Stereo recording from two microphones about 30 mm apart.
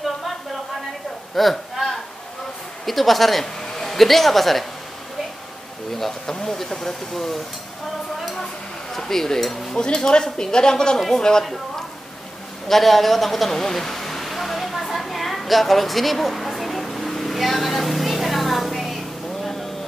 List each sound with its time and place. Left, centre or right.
1.3 s hiccup: centre
2.8 s a woman's voice: centre
6.2 s speech: centre
8.9 s speech: centre
9.8 s speech: left
12.6 s speech: centre
13.5 s a sound: centre